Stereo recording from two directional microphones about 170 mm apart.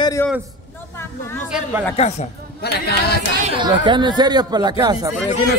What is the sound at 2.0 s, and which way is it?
Speech, 35° left (ahead or behind).